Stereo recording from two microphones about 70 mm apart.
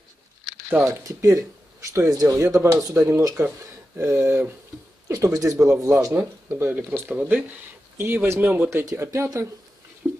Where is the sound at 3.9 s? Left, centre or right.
Right.